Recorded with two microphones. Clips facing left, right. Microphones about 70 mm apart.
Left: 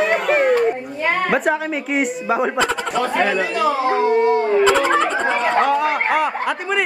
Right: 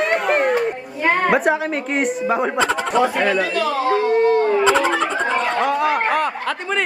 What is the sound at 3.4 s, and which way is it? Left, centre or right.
Speech, centre.